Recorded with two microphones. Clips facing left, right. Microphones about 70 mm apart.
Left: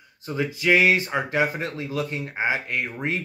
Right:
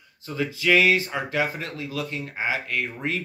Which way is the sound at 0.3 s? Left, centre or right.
Left.